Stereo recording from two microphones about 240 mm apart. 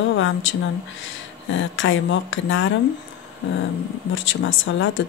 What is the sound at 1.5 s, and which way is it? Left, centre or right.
A woman's voice, left.